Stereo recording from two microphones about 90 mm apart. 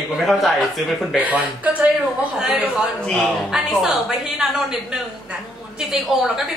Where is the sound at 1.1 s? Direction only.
15° right (ahead or behind).